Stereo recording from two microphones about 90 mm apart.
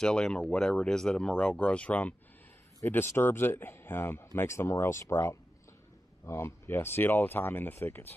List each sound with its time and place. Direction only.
0.0 s speech: 10° left (ahead or behind)